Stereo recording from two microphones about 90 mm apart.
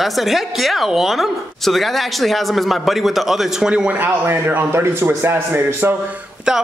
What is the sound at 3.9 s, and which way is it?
A man's voice, 20° right (ahead or behind).